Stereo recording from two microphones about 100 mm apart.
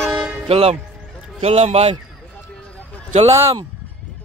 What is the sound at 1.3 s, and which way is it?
Speech, 90° right.